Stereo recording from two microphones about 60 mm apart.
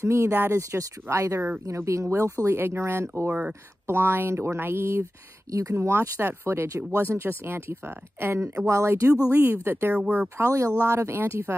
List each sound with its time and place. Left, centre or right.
0.0 s speech: right
5.5 s speech: right
8.6 s speech: right
9.3 s speech: right
10.3 s speech: right